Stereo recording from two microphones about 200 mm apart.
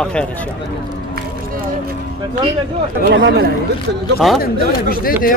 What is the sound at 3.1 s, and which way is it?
Speech, 60° right (ahead or behind).